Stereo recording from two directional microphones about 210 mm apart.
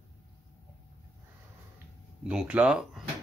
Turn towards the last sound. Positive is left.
turn(degrees=-5)  # may be behind; listen again after turning